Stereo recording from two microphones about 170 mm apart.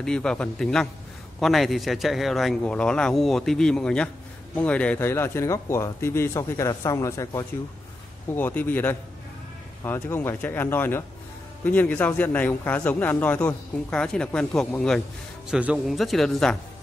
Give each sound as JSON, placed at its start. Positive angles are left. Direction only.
{"t": 0.0, "sound": "speech", "side_deg": 5}